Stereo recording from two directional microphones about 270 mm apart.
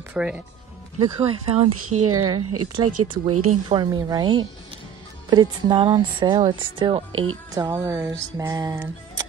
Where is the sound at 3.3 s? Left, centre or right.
Right.